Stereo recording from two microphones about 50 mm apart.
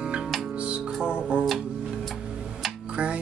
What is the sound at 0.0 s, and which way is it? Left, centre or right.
Music, centre.